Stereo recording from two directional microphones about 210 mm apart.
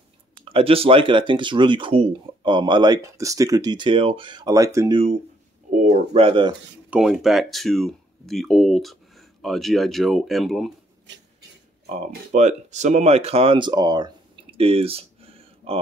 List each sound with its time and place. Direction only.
0.5 s speech: 25° right (ahead or behind)
5.8 s speech: 30° right (ahead or behind)
6.9 s speech: centre (ahead or behind)
12.1 s speech: 35° right (ahead or behind); by 14.1 s 20° right (ahead or behind)
14.6 s a sound: 25° right (ahead or behind)